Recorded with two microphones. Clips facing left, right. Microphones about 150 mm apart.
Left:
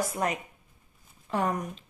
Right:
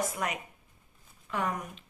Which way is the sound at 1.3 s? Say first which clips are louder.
Left 4 dB; 35° left (ahead or behind).